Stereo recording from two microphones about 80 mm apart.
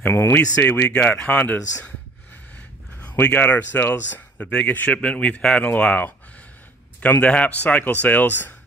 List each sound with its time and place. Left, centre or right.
0.0 s a man's voice: left
3.0 s a man's voice: centre